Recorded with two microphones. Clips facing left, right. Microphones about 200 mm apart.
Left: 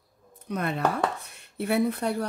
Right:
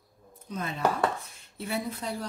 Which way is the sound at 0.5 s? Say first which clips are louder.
Left 2 dB; 65° left (ahead or behind).